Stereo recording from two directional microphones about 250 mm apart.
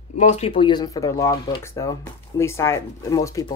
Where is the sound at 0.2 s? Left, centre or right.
Left.